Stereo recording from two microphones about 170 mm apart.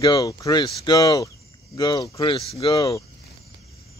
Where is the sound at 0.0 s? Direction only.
25° left (ahead or behind).